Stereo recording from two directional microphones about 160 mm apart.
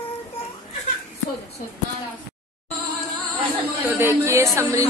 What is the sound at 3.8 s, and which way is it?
Speech, 10° right (ahead or behind).